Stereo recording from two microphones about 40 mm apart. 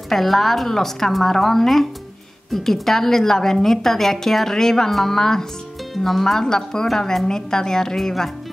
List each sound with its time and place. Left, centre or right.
0.1 s a woman's voice: centre
6.4 s a woman's voice: centre